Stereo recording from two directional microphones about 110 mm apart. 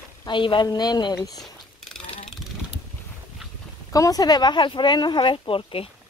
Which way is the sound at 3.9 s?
35° left (ahead or behind).